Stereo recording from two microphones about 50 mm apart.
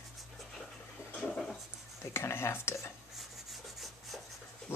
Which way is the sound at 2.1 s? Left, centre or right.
Left.